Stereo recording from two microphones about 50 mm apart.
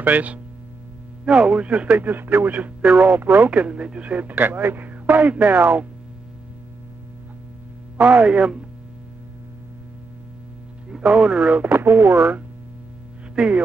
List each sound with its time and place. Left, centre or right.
0.0 s speech: right
1.2 s speech: centre
1.9 s speech: right
3.2 s speech: right
3.4 s speech: right
8.0 s speech: right
10.9 s speech: centre
11.7 s speech: right
13.4 s speech: centre